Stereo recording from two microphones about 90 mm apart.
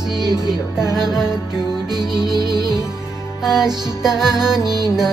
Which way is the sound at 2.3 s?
50° right (ahead or behind).